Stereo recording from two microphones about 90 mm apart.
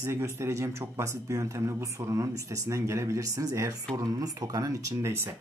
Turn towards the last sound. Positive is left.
turn(degrees=-40)  # may be behind; listen again after turning